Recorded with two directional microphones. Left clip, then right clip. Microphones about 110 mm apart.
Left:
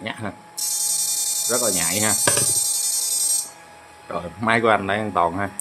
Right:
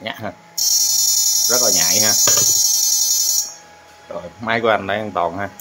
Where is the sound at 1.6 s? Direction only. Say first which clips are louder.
Right 7 dB; centre (ahead or behind).